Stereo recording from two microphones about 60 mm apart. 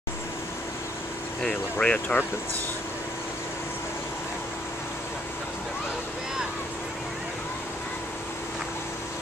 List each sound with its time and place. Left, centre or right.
1.4 s speech: centre